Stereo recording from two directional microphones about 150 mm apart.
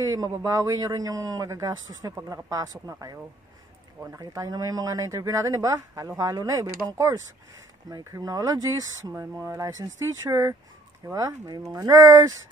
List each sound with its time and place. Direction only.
0.0 s speech: 25° right (ahead or behind)